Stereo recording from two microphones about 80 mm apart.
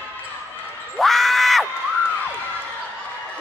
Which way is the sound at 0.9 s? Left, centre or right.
Centre.